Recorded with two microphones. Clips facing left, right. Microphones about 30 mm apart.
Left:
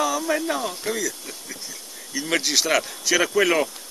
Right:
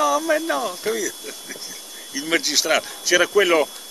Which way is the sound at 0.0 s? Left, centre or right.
Centre.